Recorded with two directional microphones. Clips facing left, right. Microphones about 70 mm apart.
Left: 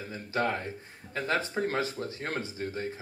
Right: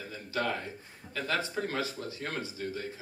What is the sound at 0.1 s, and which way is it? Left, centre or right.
Speech, left.